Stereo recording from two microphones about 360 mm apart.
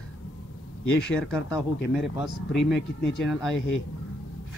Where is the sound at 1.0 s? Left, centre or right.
Centre.